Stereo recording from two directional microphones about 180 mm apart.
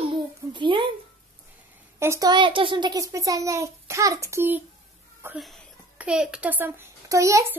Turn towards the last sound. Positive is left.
turn(degrees=-15)  # may be behind; listen again after turning